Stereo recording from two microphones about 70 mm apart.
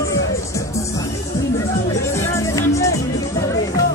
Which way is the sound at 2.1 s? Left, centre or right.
Left.